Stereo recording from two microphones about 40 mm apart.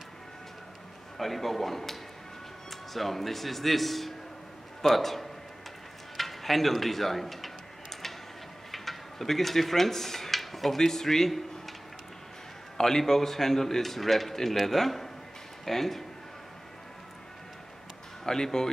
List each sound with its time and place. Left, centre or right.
1.1 s speech: centre
8.7 s speech: centre
12.7 s speech: centre
18.2 s speech: centre